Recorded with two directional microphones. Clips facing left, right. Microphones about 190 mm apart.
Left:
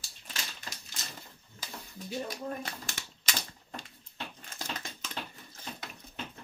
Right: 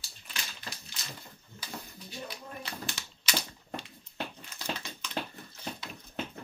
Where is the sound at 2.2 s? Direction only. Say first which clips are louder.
Left 5 dB; 45° left (ahead or behind).